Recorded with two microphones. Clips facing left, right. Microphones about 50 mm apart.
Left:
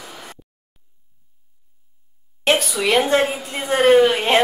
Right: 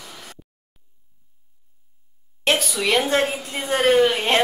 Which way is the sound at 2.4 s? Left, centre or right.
Centre.